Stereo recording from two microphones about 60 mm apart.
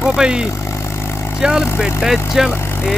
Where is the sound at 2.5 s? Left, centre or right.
Left.